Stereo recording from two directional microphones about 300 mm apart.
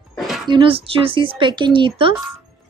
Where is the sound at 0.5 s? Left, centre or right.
Centre.